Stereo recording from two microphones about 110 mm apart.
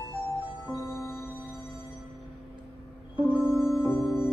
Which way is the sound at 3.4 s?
5° right (ahead or behind).